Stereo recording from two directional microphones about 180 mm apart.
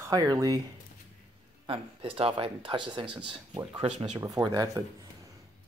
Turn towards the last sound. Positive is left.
turn(degrees=-20)  # may be behind; listen again after turning